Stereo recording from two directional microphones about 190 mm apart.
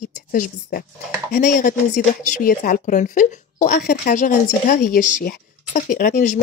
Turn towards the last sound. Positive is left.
turn(degrees=45)  # may be behind; listen again after turning